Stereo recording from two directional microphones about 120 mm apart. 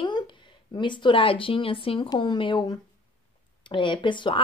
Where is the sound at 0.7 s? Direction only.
40° left (ahead or behind).